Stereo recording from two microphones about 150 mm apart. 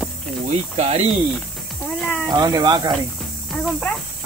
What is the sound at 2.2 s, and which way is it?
Speech, 25° right (ahead or behind).